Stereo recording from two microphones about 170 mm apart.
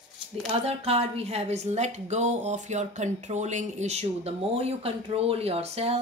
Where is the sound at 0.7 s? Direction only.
35° right (ahead or behind).